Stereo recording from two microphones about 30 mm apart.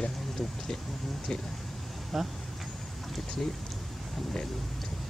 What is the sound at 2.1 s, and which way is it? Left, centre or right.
Speech, centre.